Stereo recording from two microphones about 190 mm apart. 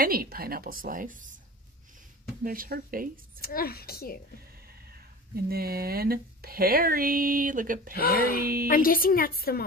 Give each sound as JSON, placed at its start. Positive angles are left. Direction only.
{"t": 0.0, "sound": "speech", "side_deg": -50}
{"t": 2.4, "sound": "speech", "side_deg": -50}
{"t": 3.3, "sound": "a woman's voice", "side_deg": 50}
{"t": 5.3, "sound": "speech", "side_deg": -55}
{"t": 7.9, "sound": "a woman's voice", "side_deg": 55}